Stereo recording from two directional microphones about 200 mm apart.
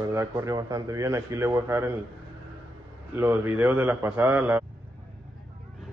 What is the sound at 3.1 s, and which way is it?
Speech, 10° right (ahead or behind).